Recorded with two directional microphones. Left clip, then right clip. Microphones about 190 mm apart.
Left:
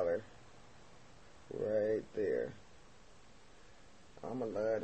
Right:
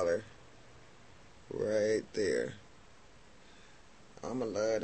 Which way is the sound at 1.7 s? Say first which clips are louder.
Right 3 dB; 20° right (ahead or behind).